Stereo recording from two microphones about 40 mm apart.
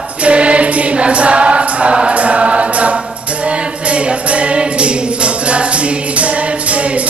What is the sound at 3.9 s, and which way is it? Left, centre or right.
Music, right.